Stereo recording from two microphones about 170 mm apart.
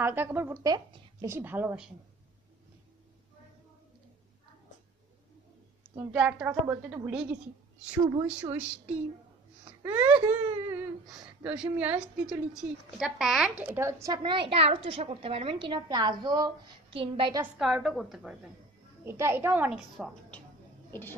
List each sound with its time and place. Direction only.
0.0 s speech: 10° right (ahead or behind)
6.1 s a woman's voice: 10° right (ahead or behind); by 17.3 s 30° right (ahead or behind)
17.6 s a woman's voice: centre (ahead or behind)
19.0 s speech: 15° right (ahead or behind)
20.9 s a woman's voice: 10° left (ahead or behind)